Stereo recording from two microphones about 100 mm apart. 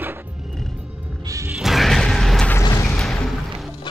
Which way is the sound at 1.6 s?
Centre (ahead or behind).